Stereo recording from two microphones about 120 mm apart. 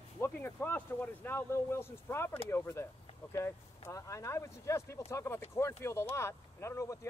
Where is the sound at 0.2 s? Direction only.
20° left (ahead or behind).